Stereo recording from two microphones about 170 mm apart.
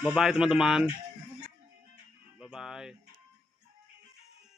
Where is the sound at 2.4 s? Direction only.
5° right (ahead or behind).